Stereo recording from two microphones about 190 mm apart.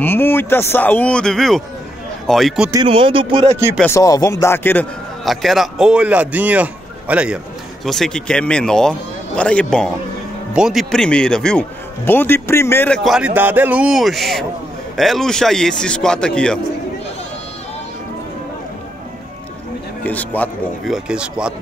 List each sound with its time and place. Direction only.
0.0 s a man's voice: 10° left (ahead or behind)
2.7 s speech: 25° right (ahead or behind)
3.5 s speech: 10° right (ahead or behind)
3.8 s speech: 15° left (ahead or behind)
5.2 s a man's voice: centre (ahead or behind)
20.0 s a man's voice: 10° left (ahead or behind)